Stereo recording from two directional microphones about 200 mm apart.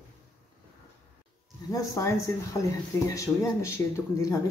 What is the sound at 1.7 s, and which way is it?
Speech, 15° left (ahead or behind).